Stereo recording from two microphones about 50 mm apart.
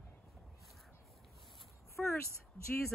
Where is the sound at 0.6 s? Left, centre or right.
Centre.